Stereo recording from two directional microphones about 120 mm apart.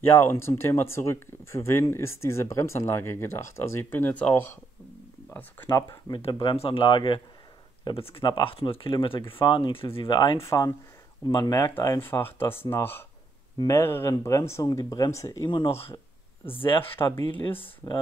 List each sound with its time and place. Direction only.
0.0 s speech: 20° left (ahead or behind)
5.7 s speech: 30° left (ahead or behind)
6.4 s speech: 50° left (ahead or behind); by 15.4 s 25° left (ahead or behind)
15.4 s speech: 40° left (ahead or behind)
16.9 s speech: 20° left (ahead or behind)